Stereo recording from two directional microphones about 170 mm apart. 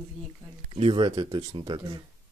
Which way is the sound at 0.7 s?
30° right (ahead or behind).